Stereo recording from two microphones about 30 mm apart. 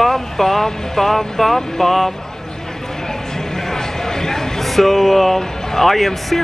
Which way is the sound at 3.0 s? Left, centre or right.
Centre.